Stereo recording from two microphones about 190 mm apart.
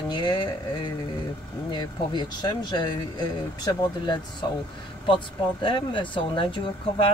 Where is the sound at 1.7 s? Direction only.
25° left (ahead or behind).